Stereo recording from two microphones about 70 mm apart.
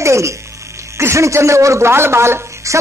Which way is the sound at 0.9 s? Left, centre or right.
Right.